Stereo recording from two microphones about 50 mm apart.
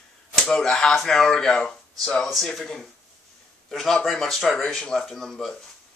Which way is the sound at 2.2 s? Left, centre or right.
Centre.